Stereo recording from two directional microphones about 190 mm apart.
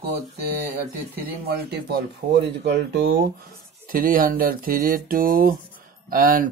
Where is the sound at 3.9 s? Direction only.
50° right (ahead or behind).